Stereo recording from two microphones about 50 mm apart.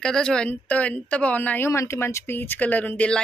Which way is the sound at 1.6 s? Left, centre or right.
Left.